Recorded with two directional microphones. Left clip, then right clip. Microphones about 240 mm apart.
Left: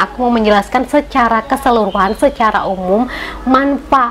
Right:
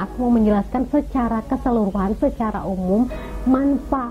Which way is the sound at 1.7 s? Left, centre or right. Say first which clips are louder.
Left 9 dB; left.